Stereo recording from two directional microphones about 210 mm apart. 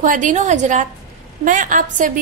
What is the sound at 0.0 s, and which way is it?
A woman's voice, 40° right (ahead or behind).